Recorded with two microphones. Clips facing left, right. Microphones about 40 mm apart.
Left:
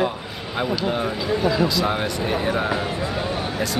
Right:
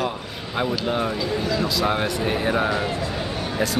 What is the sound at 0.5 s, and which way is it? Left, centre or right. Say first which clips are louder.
Speech: even; centre.